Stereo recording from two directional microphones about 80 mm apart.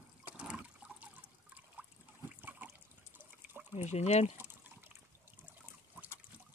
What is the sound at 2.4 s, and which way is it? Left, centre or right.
Water, right.